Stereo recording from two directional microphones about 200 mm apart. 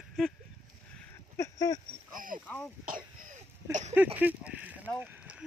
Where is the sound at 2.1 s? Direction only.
45° right (ahead or behind).